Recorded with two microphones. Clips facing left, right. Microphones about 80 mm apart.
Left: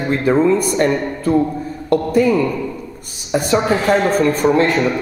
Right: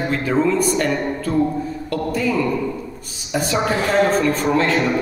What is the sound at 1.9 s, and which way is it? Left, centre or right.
Speech, left.